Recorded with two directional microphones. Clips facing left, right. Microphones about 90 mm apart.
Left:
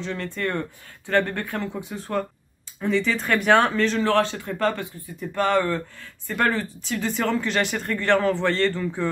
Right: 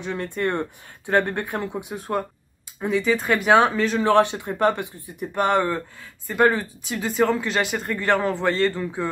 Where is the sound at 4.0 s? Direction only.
20° right (ahead or behind).